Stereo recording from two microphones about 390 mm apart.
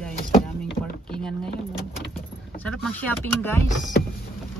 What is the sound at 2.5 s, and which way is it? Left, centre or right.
Speech, centre.